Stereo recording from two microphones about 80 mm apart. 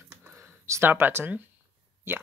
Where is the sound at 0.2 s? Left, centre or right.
Right.